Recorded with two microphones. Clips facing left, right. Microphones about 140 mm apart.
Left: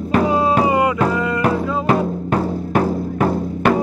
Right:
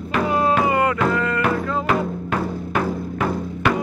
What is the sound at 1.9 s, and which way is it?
Music, 35° left (ahead or behind).